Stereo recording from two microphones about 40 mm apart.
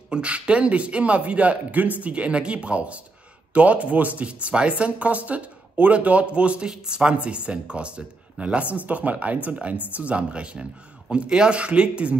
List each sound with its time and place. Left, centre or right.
0.1 s speech: right